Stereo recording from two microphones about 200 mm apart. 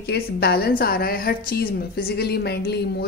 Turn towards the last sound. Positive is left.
turn(degrees=50)  # may be behind; listen again after turning